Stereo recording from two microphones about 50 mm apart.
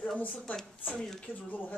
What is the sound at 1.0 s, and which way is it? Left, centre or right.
Speech, centre.